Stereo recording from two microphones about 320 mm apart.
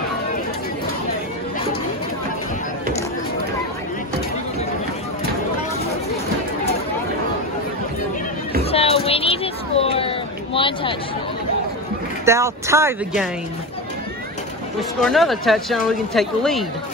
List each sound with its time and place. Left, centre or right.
8.6 s a sound: centre
12.3 s speech: centre
14.8 s speech: centre